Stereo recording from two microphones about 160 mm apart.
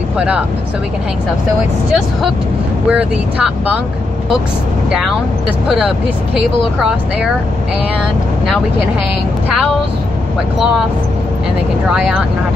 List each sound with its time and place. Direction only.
2.9 s speech: 5° right (ahead or behind)
5.7 s speech: centre (ahead or behind)